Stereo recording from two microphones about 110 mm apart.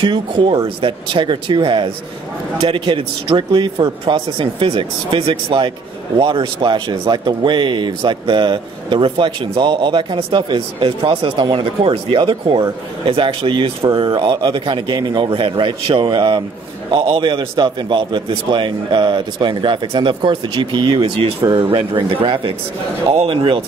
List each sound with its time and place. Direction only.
0.0 s speech: 50° right (ahead or behind)